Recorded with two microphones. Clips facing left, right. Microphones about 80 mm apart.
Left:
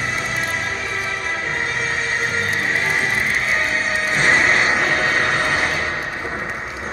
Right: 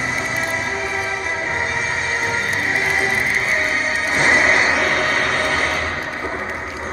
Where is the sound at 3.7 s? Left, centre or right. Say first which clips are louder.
Even; left.